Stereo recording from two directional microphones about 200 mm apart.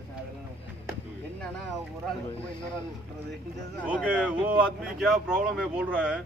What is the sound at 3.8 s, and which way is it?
Speech, 5° right (ahead or behind).